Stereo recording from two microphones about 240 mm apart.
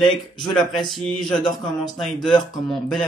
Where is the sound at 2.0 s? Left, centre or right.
Centre.